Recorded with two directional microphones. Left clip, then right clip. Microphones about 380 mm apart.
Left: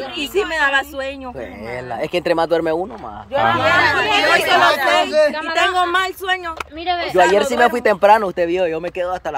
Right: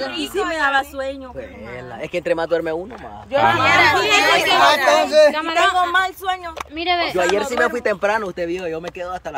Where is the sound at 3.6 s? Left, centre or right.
Right.